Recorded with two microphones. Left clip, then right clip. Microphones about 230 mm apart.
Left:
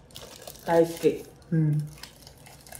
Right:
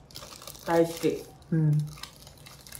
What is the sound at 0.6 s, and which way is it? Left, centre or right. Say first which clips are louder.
Speech: left 2 dB; centre.